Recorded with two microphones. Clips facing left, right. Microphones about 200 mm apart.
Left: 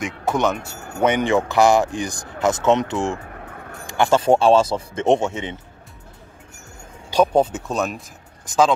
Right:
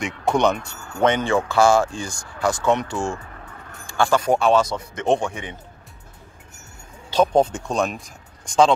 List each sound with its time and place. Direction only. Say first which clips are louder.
0.0 s speech: right 1 dB; 5° left (ahead or behind)
1.0 s speech: left 1 dB; 15° left (ahead or behind)
3.4 s keys jangling: left 5 dB; 50° left (ahead or behind)
3.8 s speech: left 2 dB; 20° left (ahead or behind)
7.1 s speech: left 1 dB; 10° left (ahead or behind)